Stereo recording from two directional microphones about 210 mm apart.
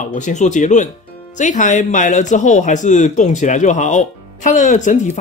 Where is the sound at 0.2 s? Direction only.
35° left (ahead or behind).